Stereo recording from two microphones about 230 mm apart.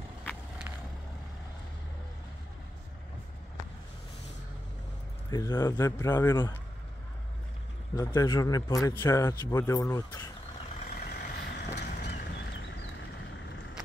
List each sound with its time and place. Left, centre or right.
0.2 s vehicle: centre
5.3 s a man's voice: centre
7.9 s a man's voice: centre
10.9 s vehicle: left